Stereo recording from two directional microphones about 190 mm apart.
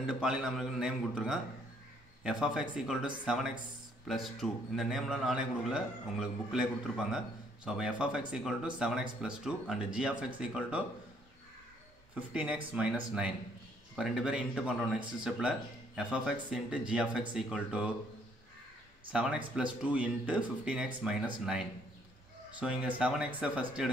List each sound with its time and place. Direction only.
0.0 s speech: 5° right (ahead or behind)
12.2 s speech: 5° right (ahead or behind)
19.1 s speech: 5° right (ahead or behind)
22.6 s speech: 5° right (ahead or behind)